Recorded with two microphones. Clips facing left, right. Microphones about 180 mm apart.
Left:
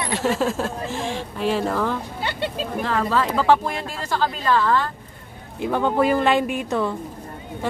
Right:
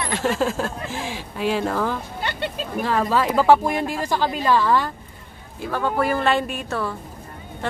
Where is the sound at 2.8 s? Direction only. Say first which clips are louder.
Right 2 dB; 10° right (ahead or behind).